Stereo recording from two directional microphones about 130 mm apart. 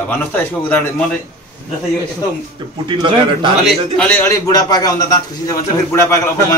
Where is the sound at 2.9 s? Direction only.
35° right (ahead or behind).